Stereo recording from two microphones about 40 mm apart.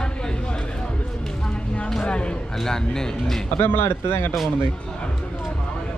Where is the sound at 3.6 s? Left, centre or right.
Left.